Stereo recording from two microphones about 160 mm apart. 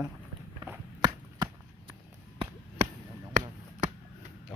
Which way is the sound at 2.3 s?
45° right (ahead or behind).